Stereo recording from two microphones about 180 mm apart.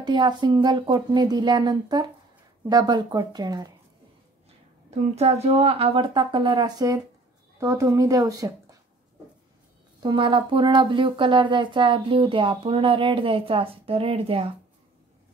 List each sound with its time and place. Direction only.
0.0 s speech: 25° right (ahead or behind)
4.9 s speech: 35° right (ahead or behind); by 8.7 s 20° right (ahead or behind)
10.0 s speech: 25° right (ahead or behind)